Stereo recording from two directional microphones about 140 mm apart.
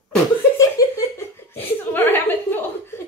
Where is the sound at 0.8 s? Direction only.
25° left (ahead or behind).